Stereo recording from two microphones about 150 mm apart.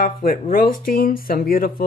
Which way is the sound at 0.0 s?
70° left (ahead or behind).